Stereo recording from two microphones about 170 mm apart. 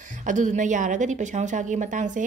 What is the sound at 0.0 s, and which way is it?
Speech, 50° right (ahead or behind).